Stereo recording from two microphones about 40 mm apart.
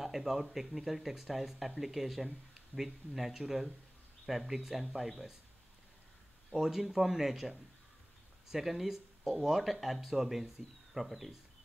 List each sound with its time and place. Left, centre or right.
0.0 s speech: centre
6.5 s speech: centre